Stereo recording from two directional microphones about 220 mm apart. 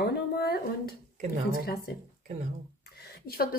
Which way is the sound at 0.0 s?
45° left (ahead or behind).